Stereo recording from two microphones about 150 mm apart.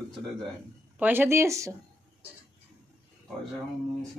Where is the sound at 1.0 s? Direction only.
15° right (ahead or behind).